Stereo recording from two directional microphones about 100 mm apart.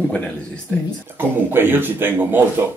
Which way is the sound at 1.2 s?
20° right (ahead or behind).